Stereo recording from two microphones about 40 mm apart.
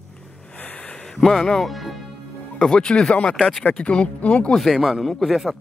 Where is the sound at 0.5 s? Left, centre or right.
Left.